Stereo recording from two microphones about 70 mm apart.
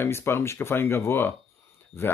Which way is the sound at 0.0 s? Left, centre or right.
Left.